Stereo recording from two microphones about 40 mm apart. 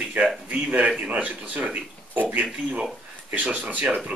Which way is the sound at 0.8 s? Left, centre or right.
Right.